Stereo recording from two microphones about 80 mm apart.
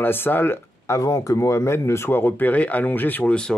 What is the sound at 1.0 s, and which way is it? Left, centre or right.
Speech, left.